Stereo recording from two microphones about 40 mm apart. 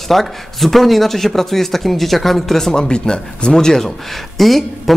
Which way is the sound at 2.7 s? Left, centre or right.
Left.